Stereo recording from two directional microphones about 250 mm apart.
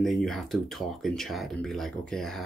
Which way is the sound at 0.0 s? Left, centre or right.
Centre.